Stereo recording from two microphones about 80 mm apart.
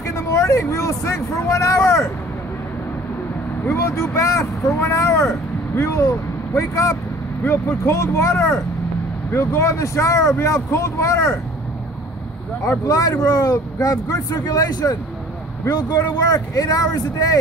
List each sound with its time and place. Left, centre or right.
0.1 s a sound: left
3.6 s speech: left
12.6 s speech: left